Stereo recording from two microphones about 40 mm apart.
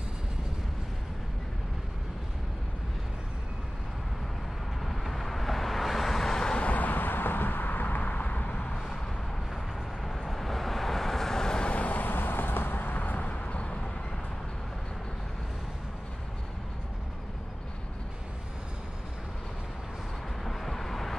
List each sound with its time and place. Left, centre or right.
4.8 s vehicle: centre
6.6 s vehicle: left
10.0 s vehicle: centre
11.7 s vehicle: left
20.4 s vehicle: centre